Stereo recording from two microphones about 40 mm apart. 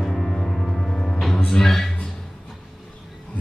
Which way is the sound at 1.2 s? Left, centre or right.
Centre.